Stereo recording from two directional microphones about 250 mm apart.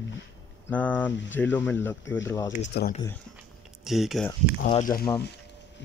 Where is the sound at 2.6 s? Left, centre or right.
Left.